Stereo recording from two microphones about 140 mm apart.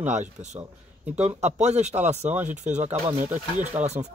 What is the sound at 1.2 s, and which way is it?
Speech, 55° right (ahead or behind).